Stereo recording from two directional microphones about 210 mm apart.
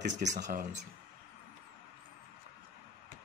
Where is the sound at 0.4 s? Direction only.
45° right (ahead or behind).